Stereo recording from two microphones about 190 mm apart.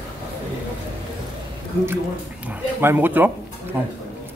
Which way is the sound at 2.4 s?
10° right (ahead or behind).